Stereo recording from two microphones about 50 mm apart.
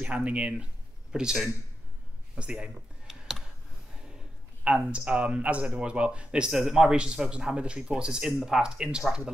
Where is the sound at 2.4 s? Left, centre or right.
Right.